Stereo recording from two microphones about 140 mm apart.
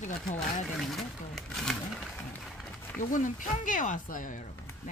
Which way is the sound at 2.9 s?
65° left (ahead or behind).